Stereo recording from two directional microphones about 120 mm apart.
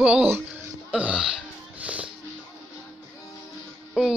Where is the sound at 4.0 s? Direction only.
5° right (ahead or behind).